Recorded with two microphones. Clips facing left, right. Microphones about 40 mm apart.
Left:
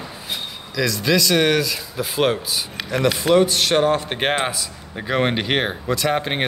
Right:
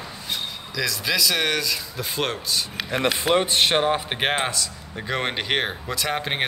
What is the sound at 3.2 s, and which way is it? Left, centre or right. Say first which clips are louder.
Speech: left 4 dB; right.